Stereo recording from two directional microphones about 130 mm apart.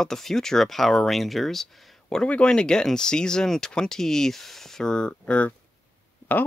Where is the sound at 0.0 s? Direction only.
5° left (ahead or behind).